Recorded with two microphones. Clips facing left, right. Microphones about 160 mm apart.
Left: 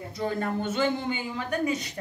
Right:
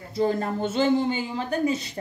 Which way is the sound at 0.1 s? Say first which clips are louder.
Right 5 dB; 30° right (ahead or behind).